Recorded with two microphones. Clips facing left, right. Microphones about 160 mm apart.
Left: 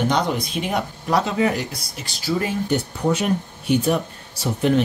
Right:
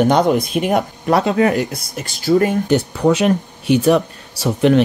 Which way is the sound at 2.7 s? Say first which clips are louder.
Right 6 dB; 90° right.